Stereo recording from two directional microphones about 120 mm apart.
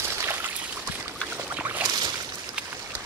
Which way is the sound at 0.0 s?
20° right (ahead or behind).